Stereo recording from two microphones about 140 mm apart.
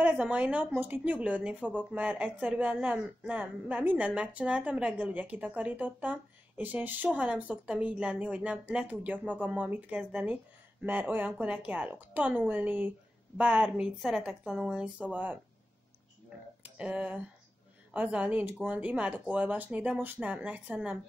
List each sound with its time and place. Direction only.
0.0 s a woman's voice: 10° right (ahead or behind)
16.6 s a woman's voice: 10° right (ahead or behind)